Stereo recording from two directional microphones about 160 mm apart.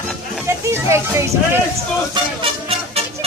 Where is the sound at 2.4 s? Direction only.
40° right (ahead or behind).